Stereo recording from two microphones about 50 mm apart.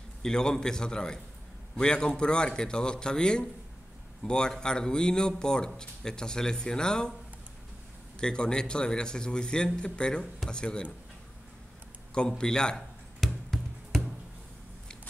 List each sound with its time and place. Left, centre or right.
0.2 s a man's voice: centre
8.2 s a man's voice: centre
12.1 s music: centre